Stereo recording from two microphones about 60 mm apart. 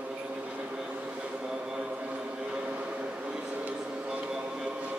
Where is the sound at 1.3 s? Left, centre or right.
Centre.